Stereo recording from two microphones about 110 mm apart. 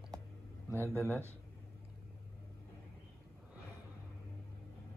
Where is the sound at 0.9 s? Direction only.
25° right (ahead or behind).